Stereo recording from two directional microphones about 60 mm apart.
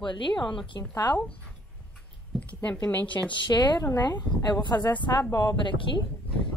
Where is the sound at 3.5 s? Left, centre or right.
Left.